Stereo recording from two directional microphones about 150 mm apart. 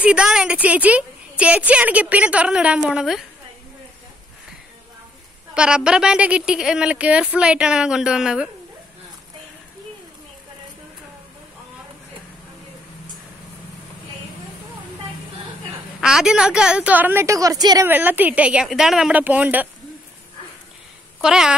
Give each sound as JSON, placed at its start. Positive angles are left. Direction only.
{"t": 0.0, "sound": "a woman's voice", "side_deg": -5}
{"t": 5.5, "sound": "speech", "side_deg": -5}
{"t": 16.0, "sound": "a woman's voice", "side_deg": -5}
{"t": 17.8, "sound": "a woman's voice", "side_deg": -10}
{"t": 21.2, "sound": "speech", "side_deg": -5}